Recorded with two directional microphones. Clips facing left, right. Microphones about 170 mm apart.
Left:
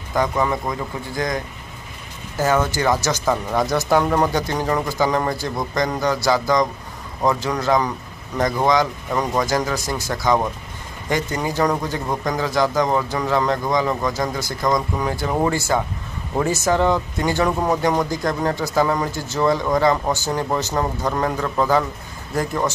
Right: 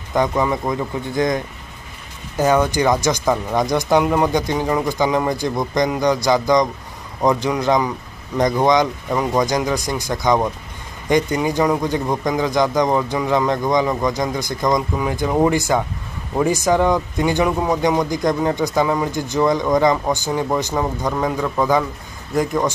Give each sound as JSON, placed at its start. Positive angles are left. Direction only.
{"t": 0.3, "sound": "a man's voice", "side_deg": -15}